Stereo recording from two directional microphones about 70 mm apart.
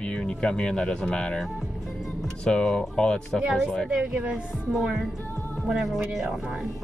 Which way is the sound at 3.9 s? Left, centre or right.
Centre.